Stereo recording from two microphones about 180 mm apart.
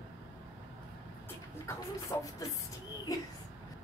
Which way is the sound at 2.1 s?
20° left (ahead or behind).